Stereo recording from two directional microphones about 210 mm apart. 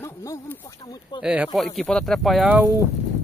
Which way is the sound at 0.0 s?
15° left (ahead or behind).